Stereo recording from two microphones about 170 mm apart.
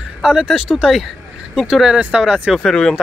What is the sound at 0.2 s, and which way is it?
Speech, 5° right (ahead or behind).